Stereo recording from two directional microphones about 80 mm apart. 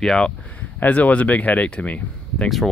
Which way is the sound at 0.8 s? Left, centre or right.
Centre.